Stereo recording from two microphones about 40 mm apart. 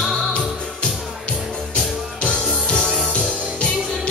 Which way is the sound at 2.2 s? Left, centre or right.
Left.